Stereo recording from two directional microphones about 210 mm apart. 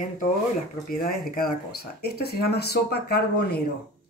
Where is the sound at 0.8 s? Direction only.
45° left (ahead or behind).